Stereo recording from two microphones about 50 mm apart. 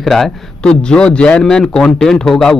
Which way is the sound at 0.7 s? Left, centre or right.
Centre.